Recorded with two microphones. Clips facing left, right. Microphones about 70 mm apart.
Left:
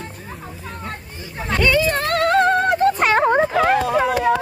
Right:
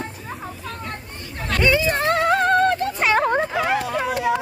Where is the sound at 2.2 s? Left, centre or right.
Centre.